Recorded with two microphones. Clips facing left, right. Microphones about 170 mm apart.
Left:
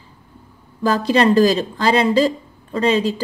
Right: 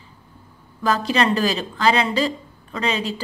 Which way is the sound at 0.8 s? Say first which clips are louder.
Left 5 dB; 35° left (ahead or behind).